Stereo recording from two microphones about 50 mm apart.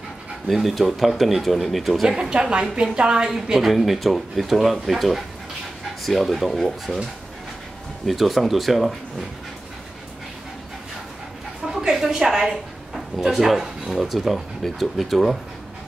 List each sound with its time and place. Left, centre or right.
0.5 s speech: centre
2.0 s a woman's voice: centre
3.3 s speech: centre
8.1 s speech: centre
11.6 s a woman's voice: centre